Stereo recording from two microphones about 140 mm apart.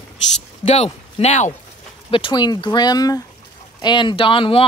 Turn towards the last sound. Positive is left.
turn(degrees=40)  # may be behind; listen again after turning